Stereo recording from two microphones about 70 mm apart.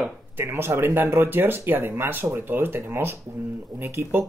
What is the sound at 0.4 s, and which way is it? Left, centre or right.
Speech, right.